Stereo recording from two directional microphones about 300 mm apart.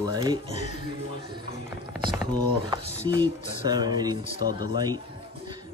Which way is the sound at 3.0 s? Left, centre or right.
Centre.